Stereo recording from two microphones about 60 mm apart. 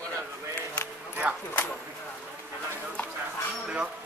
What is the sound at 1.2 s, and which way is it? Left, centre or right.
Speech, right.